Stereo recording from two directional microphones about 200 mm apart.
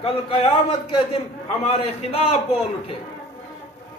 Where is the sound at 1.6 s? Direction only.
30° left (ahead or behind).